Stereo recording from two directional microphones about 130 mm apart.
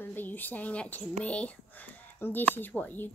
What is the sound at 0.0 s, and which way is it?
A child's voice, 15° left (ahead or behind).